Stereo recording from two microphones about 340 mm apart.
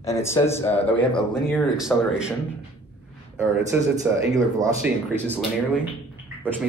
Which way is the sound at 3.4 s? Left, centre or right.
Centre.